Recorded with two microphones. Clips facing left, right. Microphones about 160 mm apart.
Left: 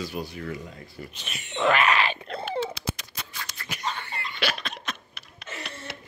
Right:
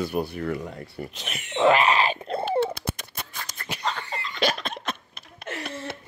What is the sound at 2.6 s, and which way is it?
Scissors, 55° right (ahead or behind).